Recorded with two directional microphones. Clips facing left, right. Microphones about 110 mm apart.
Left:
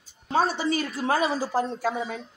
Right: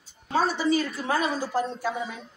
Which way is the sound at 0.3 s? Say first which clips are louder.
Even; 25° left (ahead or behind).